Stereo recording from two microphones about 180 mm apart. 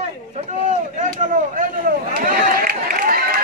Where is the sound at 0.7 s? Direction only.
45° right (ahead or behind).